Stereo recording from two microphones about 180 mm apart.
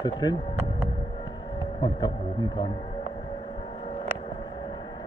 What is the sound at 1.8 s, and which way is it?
Speech, 25° left (ahead or behind).